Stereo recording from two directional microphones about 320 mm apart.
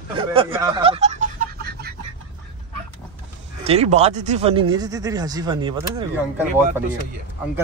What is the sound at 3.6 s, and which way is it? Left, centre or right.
Speech, centre.